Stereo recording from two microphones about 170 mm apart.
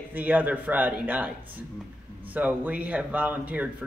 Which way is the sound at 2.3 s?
10° right (ahead or behind).